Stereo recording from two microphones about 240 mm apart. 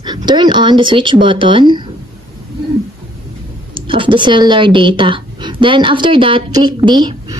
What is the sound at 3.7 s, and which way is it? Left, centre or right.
Speech, right.